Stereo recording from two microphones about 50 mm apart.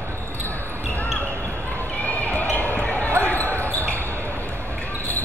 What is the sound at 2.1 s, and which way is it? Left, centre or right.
Basketball bounce, left.